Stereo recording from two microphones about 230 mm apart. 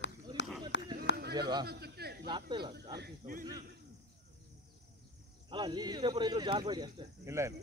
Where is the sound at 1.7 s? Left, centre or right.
Right.